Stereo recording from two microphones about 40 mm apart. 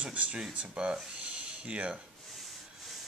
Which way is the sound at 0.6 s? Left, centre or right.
Right.